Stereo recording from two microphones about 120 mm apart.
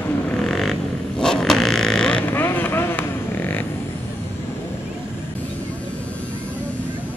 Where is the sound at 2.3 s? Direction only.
15° left (ahead or behind).